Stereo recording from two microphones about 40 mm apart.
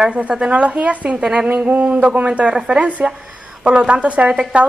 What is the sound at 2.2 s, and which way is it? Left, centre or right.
A woman's voice, right.